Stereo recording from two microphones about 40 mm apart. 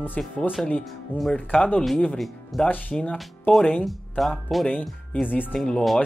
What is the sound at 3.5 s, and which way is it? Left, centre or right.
Speech, left.